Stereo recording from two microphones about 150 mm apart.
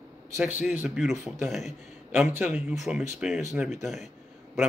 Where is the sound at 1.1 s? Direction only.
20° right (ahead or behind); by 4.1 s centre (ahead or behind).